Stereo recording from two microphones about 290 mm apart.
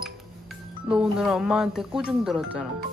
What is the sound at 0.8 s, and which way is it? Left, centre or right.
Speech, centre.